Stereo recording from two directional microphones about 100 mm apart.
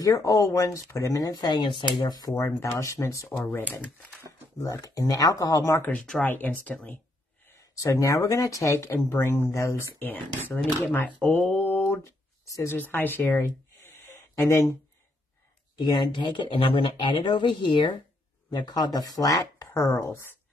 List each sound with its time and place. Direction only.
0.0 s speech: 35° left (ahead or behind)
1.3 s speech: 45° left (ahead or behind)
5.9 s speech: 5° left (ahead or behind)
6.2 s speech: 20° left (ahead or behind)
7.5 s speech: 35° left (ahead or behind)
12.4 s speech: 30° left (ahead or behind)
12.7 s speech: 20° left (ahead or behind)
15.8 s speech: 45° left (ahead or behind)
16.9 s speech: 50° left (ahead or behind); by 20.3 s 25° left (ahead or behind)